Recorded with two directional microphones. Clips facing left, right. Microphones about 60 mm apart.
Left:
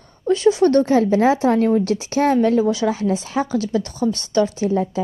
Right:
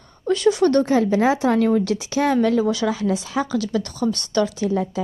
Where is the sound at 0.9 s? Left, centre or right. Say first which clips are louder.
Left 2 dB; left.